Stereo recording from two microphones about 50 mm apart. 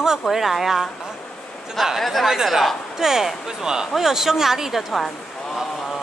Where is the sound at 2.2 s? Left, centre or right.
Centre.